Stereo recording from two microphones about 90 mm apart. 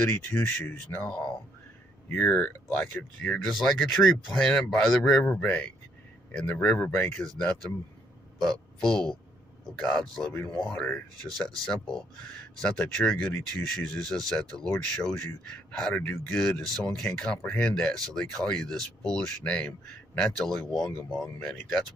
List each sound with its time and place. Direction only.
0.0 s speech: 25° left (ahead or behind)
4.1 s speech: 5° left (ahead or behind); by 7.2 s 25° left (ahead or behind)
7.2 s a man's voice: 10° left (ahead or behind)
11.2 s speech: centre (ahead or behind)
21.5 s speech: 20° left (ahead or behind)